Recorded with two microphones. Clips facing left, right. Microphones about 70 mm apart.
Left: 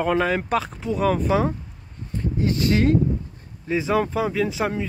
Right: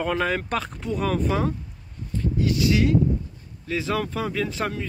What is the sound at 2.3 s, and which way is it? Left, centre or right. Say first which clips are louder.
Speech: left 1 dB; left.